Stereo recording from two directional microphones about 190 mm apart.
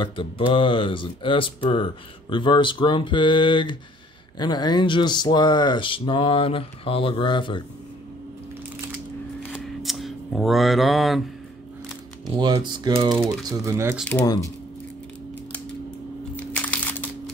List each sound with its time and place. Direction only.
0.0 s speech: 25° left (ahead or behind)
9.5 s a sound: centre (ahead or behind)
12.3 s speech: 20° right (ahead or behind)
16.5 s crumpling: 10° left (ahead or behind)